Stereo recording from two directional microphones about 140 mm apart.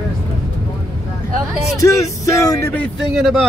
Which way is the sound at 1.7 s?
20° left (ahead or behind).